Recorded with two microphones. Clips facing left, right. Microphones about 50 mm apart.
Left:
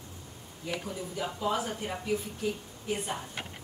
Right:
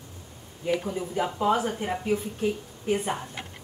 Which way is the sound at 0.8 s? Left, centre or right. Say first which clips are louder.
Right 7 dB; right.